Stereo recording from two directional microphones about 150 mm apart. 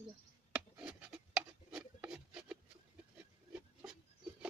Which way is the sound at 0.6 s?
5° right (ahead or behind).